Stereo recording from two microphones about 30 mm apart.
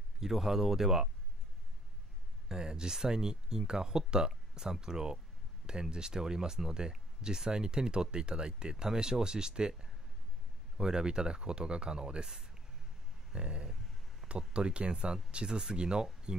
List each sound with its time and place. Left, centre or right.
0.2 s speech: centre
2.4 s speech: right
13.3 s speech: right